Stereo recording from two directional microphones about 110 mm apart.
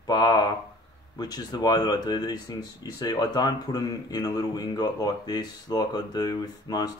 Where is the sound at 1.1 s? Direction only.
35° left (ahead or behind).